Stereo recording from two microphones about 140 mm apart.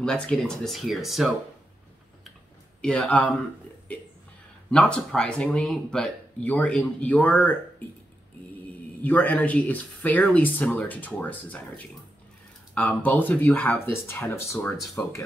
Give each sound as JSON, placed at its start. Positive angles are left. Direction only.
{"t": 0.0, "sound": "speech", "side_deg": 5}
{"t": 2.8, "sound": "speech", "side_deg": 5}
{"t": 9.0, "sound": "speech", "side_deg": 10}